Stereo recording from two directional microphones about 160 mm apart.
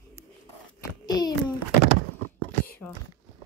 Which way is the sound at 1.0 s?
25° left (ahead or behind).